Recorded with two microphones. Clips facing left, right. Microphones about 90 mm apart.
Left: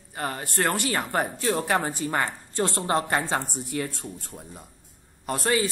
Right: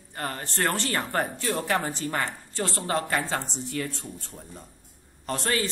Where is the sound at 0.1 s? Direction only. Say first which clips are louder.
Left 2 dB; 15° left (ahead or behind).